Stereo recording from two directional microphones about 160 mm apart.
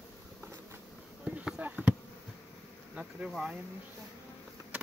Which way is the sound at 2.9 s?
10° right (ahead or behind).